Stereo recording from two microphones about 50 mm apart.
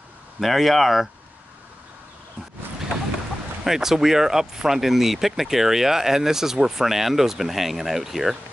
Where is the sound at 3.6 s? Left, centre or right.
Centre.